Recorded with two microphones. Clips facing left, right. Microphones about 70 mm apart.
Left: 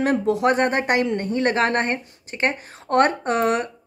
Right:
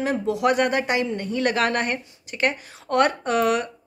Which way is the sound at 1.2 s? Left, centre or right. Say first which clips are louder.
Left 2 dB; left.